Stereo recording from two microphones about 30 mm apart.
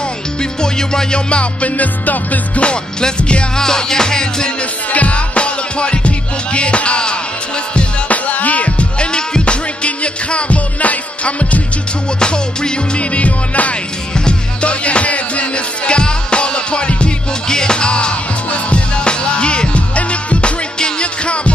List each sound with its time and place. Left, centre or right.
0.4 s music: left
1.1 s music: left
1.8 s music: left
2.6 s music: left
3.5 s music: centre
4.9 s music: left
8.1 s music: left
9.1 s music: left
12.2 s music: left
14.1 s music: left
17.5 s music: left